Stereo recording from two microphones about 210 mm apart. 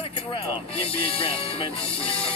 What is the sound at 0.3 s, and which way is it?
Speech, 25° left (ahead or behind).